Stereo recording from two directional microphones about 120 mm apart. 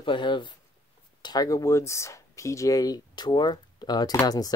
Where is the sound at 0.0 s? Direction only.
40° left (ahead or behind).